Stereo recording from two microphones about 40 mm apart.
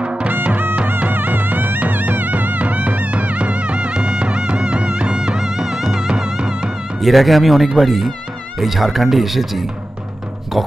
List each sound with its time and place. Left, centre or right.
0.5 s music: right; by 6.7 s centre
7.0 s speech: centre